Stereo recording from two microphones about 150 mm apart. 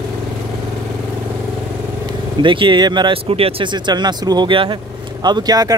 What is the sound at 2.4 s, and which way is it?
Speech, 35° right (ahead or behind).